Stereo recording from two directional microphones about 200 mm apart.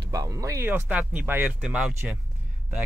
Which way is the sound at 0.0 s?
20° right (ahead or behind).